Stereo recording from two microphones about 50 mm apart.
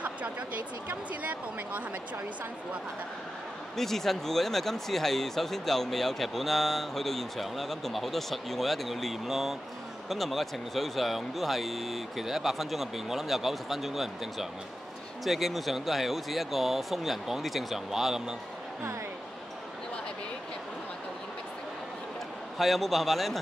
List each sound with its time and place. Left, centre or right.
0.8 s speech: right
3.7 s speech: centre
22.6 s speech: centre